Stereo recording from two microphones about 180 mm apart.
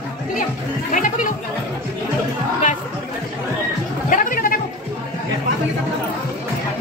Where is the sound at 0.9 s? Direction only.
45° left (ahead or behind).